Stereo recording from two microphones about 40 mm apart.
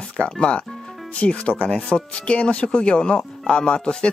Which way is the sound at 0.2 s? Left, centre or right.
Left.